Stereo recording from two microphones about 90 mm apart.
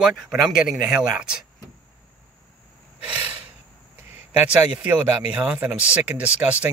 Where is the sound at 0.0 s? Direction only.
Centre (ahead or behind).